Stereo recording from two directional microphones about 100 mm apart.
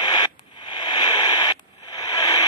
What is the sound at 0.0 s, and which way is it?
Radio, 50° left (ahead or behind).